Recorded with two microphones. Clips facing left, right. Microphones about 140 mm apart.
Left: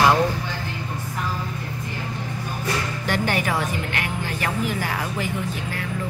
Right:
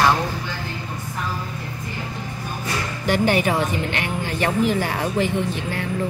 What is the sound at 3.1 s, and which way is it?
Speech, 20° right (ahead or behind).